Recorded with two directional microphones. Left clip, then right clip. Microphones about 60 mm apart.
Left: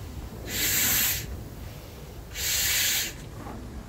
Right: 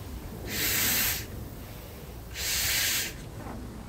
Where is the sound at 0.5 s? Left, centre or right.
Centre.